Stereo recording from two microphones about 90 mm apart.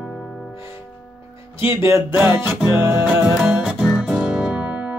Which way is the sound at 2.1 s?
25° right (ahead or behind).